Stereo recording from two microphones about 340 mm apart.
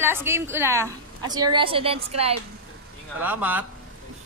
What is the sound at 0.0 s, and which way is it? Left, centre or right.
A woman's voice, centre.